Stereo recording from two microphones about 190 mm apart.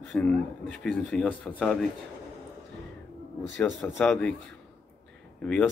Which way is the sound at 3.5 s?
5° left (ahead or behind).